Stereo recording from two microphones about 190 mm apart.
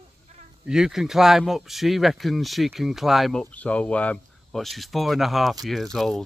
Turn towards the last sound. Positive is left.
turn(degrees=0)  # may be behind; listen again after turning